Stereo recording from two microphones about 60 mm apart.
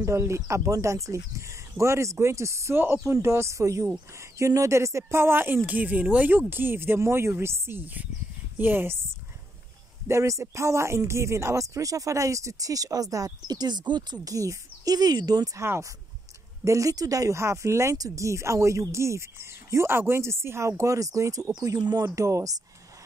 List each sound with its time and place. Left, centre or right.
0.0 s speech: right
10.0 s speech: right
14.2 s speech: right
16.6 s speech: right
17.4 s speech: right
17.9 s speech: right
21.6 s speech: right